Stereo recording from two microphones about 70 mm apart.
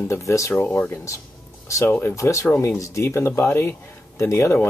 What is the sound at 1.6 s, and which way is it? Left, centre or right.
Speech, left.